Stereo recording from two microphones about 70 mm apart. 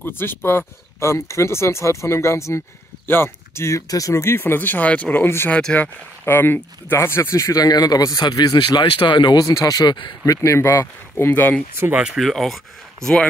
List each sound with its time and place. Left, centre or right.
0.0 s speech: left
5.2 s speech: left
5.5 s speech: centre
6.2 s speech: left
9.5 s speech: left
12.1 s speech: centre